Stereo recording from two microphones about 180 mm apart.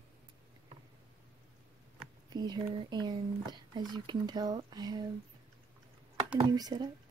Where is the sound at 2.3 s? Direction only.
20° right (ahead or behind).